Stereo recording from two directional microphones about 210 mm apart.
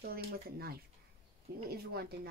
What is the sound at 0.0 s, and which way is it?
Speech, 45° right (ahead or behind).